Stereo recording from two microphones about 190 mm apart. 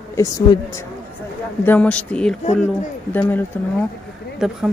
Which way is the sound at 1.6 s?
10° left (ahead or behind).